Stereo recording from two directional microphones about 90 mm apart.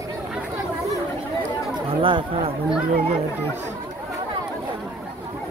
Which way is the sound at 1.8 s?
80° right.